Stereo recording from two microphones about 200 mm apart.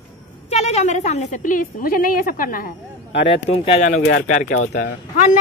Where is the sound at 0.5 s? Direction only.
35° left (ahead or behind); by 3.3 s 55° left (ahead or behind).